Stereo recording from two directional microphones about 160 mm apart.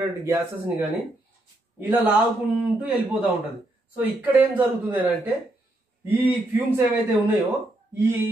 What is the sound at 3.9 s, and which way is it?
Speech, 10° right (ahead or behind).